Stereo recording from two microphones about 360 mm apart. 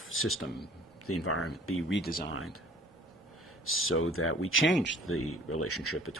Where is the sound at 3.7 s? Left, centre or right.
Left.